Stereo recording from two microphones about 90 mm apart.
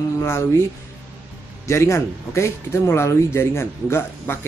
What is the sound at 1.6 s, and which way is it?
Speech, 30° left (ahead or behind).